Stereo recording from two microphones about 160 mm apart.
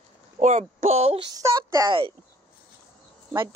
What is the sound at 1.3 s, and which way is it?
Speech, 20° right (ahead or behind).